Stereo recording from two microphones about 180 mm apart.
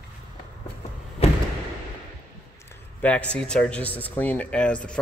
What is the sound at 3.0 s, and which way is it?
A man's voice, 5° left (ahead or behind).